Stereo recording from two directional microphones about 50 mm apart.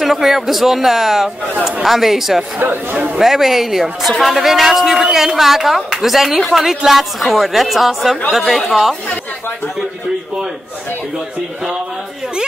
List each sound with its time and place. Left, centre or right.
0.0 s speech: centre
2.6 s a man's voice: right
3.2 s speech: centre